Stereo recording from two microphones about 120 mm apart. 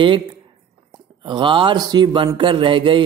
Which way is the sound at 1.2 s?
40° right (ahead or behind).